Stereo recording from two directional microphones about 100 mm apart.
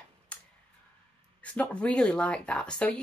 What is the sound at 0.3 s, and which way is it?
Tick, 10° left (ahead or behind).